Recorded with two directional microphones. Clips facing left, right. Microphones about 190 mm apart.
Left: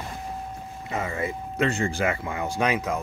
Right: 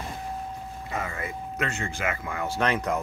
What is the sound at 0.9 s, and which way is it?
Speech, 25° left (ahead or behind).